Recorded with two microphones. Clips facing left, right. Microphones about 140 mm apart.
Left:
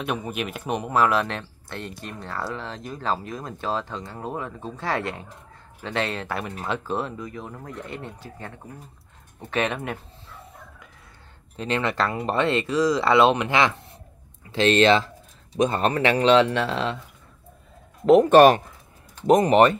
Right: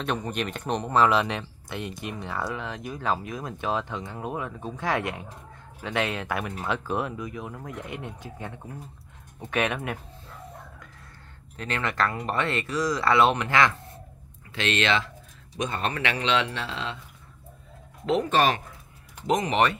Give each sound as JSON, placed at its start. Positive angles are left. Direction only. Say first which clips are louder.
{"t": 0.0, "sound": "speech", "louder": "left 1 dB", "side_deg": 5}
{"t": 2.0, "sound": "speech", "louder": "right 1 dB", "side_deg": -15}
{"t": 2.4, "sound": "speech", "louder": "left 2 dB", "side_deg": -5}
{"t": 11.5, "sound": "speech", "louder": "left 4 dB", "side_deg": 20}
{"t": 14.5, "sound": "speech", "louder": "left 8 dB", "side_deg": 35}
{"t": 18.0, "sound": "speech", "louder": "left 10 dB", "side_deg": 55}
{"t": 19.2, "sound": "speech", "louder": "left 7 dB", "side_deg": 40}